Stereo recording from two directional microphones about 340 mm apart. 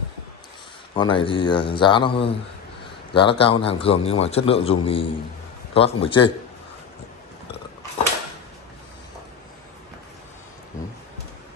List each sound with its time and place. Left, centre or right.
0.9 s a man's voice: centre